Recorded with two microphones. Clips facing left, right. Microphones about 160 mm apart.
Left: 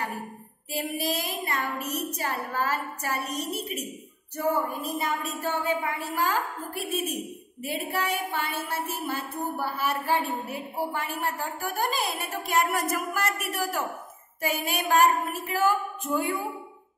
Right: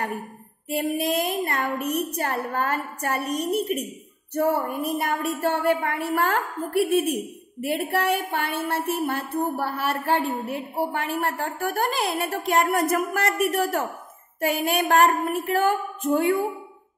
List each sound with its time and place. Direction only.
0.7 s a woman's voice: 60° right (ahead or behind)
4.3 s a sound: 60° right (ahead or behind)
4.6 s a woman's voice: 60° right (ahead or behind)